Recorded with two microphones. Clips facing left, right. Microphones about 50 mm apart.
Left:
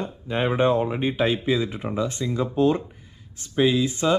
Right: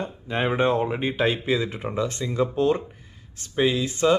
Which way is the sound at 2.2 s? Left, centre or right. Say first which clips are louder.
Left 2 dB; right.